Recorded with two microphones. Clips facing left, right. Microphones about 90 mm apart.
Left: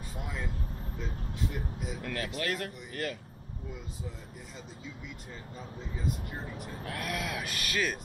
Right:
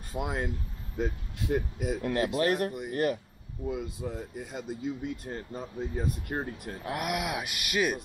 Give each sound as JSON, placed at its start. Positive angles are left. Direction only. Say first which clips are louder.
{"t": 0.2, "sound": "speech", "louder": "right 8 dB", "side_deg": -65}
{"t": 0.9, "sound": "speech", "louder": "right 9 dB", "side_deg": -55}
{"t": 2.0, "sound": "speech", "louder": "right 9 dB", "side_deg": -30}
{"t": 3.6, "sound": "speech", "louder": "right 10 dB", "side_deg": -65}
{"t": 6.9, "sound": "speech", "louder": "right 5 dB", "side_deg": -15}